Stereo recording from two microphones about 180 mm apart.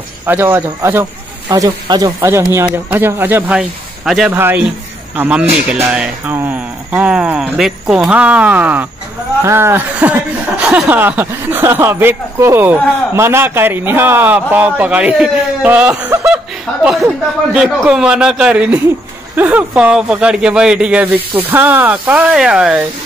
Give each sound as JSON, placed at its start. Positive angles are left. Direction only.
{"t": 0.3, "sound": "a man's voice", "side_deg": -10}